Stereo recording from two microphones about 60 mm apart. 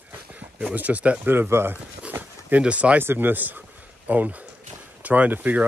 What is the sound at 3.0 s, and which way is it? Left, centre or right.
Speech, right.